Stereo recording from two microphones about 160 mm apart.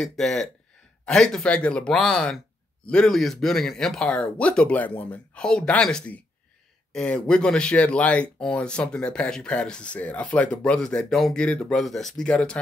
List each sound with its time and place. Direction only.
0.0 s speech: centre (ahead or behind)